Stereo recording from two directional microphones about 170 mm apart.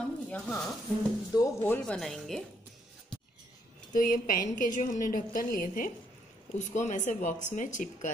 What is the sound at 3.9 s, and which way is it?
A woman's voice, 55° left (ahead or behind).